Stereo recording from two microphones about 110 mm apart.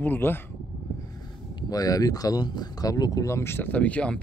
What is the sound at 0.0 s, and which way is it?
Speech, 20° left (ahead or behind).